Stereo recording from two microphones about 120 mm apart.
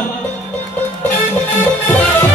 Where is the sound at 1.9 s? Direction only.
15° left (ahead or behind).